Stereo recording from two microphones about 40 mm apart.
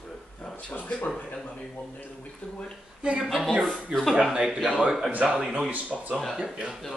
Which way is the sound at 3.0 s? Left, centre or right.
Right.